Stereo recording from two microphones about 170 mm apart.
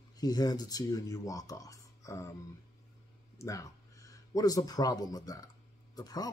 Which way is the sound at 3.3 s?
20° left (ahead or behind).